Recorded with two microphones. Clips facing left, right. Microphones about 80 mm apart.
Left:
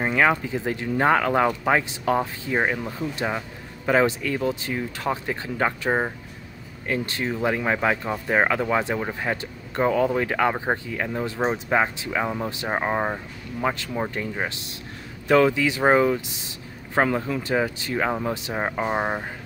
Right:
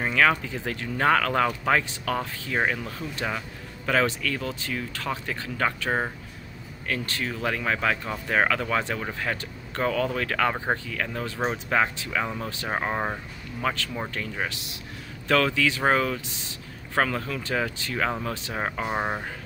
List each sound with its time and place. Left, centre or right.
0.0 s speech: centre